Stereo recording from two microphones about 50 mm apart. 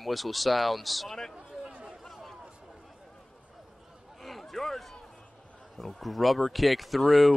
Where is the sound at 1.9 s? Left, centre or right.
Centre.